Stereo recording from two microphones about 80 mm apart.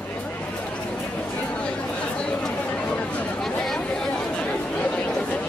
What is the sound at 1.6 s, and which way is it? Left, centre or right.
Chatter, centre.